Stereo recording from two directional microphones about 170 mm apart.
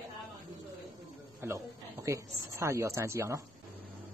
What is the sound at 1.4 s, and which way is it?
Speech, 15° right (ahead or behind).